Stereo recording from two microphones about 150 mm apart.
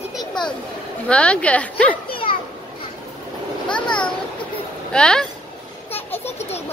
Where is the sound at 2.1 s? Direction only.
35° left (ahead or behind).